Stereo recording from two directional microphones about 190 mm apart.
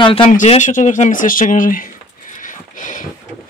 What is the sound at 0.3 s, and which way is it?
Speech, 40° left (ahead or behind).